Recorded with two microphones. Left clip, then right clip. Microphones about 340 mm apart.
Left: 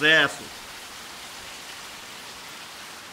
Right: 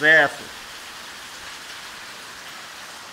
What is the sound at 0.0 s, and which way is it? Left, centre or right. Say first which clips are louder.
Speech: right 4 dB; centre.